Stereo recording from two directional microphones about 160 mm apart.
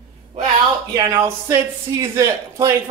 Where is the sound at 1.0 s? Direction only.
20° right (ahead or behind).